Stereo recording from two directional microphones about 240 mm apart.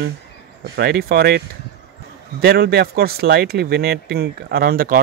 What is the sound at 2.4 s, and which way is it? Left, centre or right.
Speech, right.